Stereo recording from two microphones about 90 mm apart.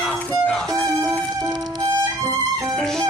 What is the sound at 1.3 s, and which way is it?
Music, 50° right (ahead or behind).